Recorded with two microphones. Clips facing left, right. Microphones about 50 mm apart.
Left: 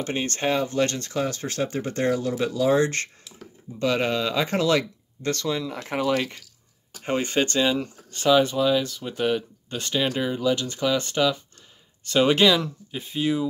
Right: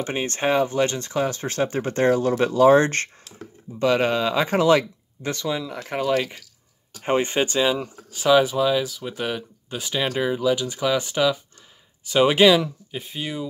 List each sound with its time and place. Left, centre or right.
0.0 s speech: right
3.8 s speech: right
5.7 s speech: centre
7.0 s speech: right
7.4 s speech: centre